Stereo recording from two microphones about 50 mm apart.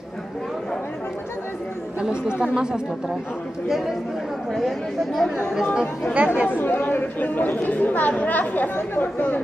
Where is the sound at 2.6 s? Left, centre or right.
Centre.